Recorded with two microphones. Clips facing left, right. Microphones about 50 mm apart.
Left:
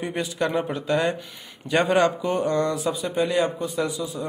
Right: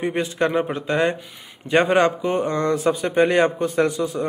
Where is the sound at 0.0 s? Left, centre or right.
Right.